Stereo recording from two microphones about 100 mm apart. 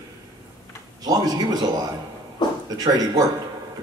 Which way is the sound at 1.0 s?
40° right (ahead or behind).